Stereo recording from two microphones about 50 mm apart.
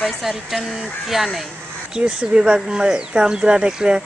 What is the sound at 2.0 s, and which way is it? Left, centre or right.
Speech, right.